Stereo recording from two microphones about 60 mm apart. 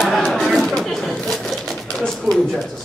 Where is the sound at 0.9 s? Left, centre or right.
Centre.